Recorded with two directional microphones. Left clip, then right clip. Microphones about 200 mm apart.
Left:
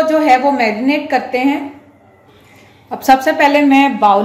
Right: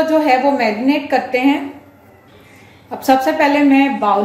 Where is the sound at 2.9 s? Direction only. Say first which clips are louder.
Left 3 dB; 35° left (ahead or behind).